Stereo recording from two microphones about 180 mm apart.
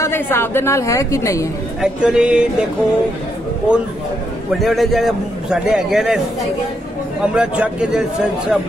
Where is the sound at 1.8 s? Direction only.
5° right (ahead or behind).